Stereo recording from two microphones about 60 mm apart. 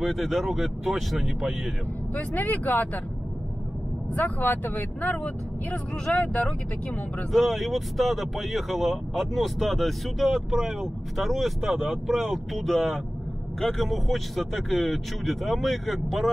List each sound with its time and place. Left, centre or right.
0.0 s speech: centre
2.1 s speech: left
4.1 s speech: left
6.1 s speech: left
7.3 s speech: centre